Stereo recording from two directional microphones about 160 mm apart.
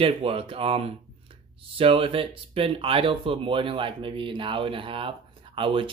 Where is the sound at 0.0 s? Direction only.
35° right (ahead or behind).